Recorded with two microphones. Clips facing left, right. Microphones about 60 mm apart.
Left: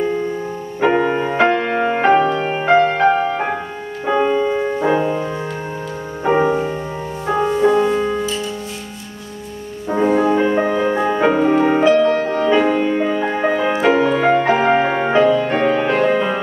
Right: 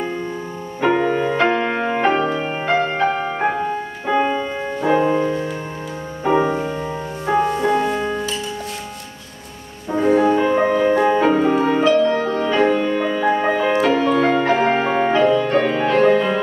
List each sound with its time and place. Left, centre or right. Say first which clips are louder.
0.7 s music: left 1 dB; centre
1.4 s music: left 3 dB; centre
2.5 s music: left 8 dB; centre
4.0 s music: left 4 dB; centre
5.0 s music: right 2 dB; centre
6.4 s music: left 3 dB; centre
9.8 s music: even; centre
11.1 s music: left 1 dB; centre
11.9 s music: left 2 dB; left
12.4 s music: left 2 dB; centre